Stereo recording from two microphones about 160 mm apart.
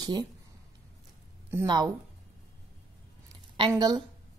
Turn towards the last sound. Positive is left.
turn(degrees=-25)  # may be behind; listen again after turning